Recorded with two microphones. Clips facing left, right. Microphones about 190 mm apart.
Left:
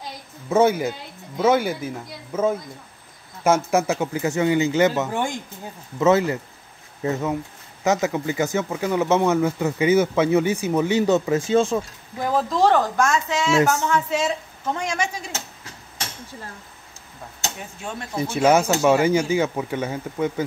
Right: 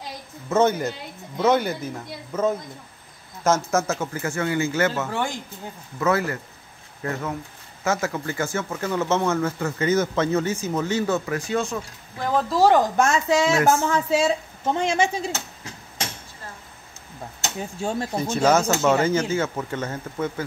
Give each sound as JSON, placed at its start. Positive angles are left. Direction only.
{"t": 0.5, "sound": "speech", "side_deg": 10}
{"t": 12.2, "sound": "speech", "side_deg": 5}
{"t": 12.5, "sound": "a woman's voice", "side_deg": -10}
{"t": 17.6, "sound": "speech", "side_deg": -30}
{"t": 18.3, "sound": "speech", "side_deg": 10}